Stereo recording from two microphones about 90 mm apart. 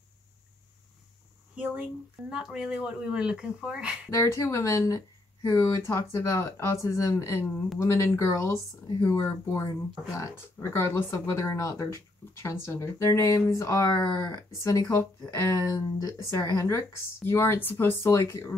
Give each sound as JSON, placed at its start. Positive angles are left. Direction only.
{"t": 1.6, "sound": "speech", "side_deg": -15}
{"t": 4.1, "sound": "speech", "side_deg": 35}